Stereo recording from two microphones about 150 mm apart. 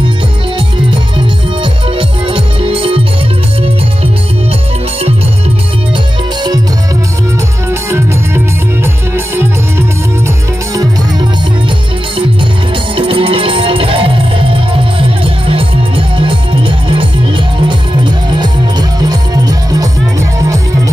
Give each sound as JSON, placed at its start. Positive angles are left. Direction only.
{"t": 1.6, "sound": "music", "side_deg": -35}
{"t": 9.1, "sound": "music", "side_deg": -15}
{"t": 12.9, "sound": "music", "side_deg": -35}
{"t": 18.4, "sound": "music", "side_deg": -25}